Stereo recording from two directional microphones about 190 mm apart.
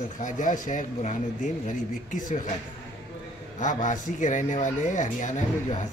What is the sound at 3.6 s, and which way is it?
Speech, 40° left (ahead or behind).